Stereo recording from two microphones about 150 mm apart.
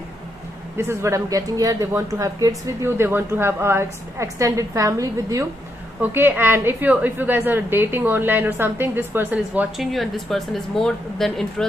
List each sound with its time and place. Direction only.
0.7 s a woman's voice: 20° right (ahead or behind); by 11.6 s centre (ahead or behind)